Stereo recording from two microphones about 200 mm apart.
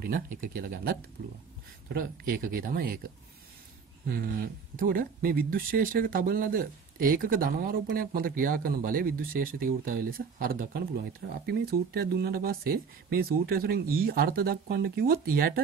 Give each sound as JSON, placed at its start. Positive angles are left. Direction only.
{"t": 0.0, "sound": "speech", "side_deg": -45}
{"t": 4.7, "sound": "speech", "side_deg": -45}